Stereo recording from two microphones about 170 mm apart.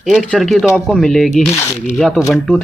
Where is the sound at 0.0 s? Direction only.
Centre (ahead or behind).